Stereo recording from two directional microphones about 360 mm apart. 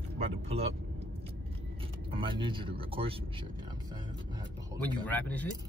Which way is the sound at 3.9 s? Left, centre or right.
Centre.